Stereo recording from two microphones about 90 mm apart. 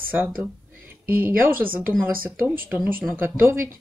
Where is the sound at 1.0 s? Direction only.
25° right (ahead or behind).